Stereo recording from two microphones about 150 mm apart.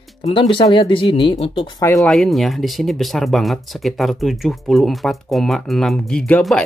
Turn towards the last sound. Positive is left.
turn(degrees=5)  # may be behind; listen again after turning